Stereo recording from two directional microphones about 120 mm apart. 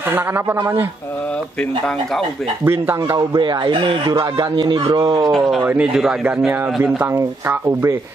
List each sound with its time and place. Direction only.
0.1 s speech: 20° right (ahead or behind)
2.6 s speech: 20° right (ahead or behind)
3.2 s speech: 40° right (ahead or behind)
5.3 s speech: centre (ahead or behind)
5.6 s speech: 10° right (ahead or behind)
7.2 s speech: 25° right (ahead or behind)